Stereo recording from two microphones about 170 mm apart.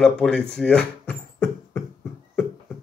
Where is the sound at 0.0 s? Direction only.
5° left (ahead or behind).